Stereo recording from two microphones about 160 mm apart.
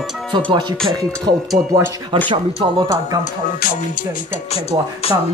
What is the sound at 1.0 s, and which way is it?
Speech, 20° right (ahead or behind).